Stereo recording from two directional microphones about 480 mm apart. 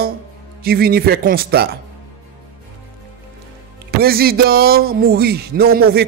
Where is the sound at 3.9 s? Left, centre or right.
Centre.